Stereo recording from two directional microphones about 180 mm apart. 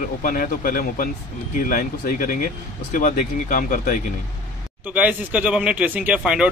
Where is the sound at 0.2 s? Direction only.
50° left (ahead or behind).